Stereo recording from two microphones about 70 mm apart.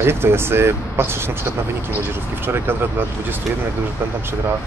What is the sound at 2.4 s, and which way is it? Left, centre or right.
Speech, right.